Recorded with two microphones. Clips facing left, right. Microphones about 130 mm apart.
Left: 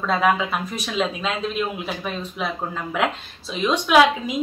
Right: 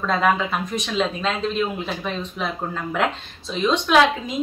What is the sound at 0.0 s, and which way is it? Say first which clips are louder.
A woman's voice: even; 5° left (ahead or behind).